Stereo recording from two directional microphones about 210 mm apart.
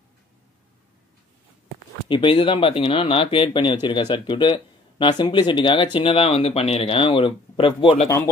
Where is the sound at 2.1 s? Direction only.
25° left (ahead or behind).